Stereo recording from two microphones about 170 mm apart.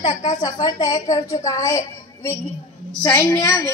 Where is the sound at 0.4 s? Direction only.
25° left (ahead or behind).